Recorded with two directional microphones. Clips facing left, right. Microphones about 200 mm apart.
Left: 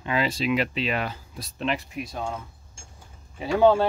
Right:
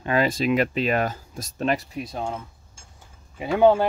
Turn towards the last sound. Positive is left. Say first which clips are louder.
# right 1 dB
turn(degrees=-20)  # may be behind; listen again after turning